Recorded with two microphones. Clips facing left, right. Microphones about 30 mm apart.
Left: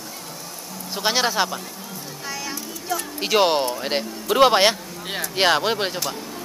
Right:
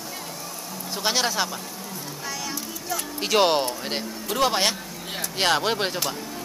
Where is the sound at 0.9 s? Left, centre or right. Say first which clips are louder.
Left 3 dB; centre.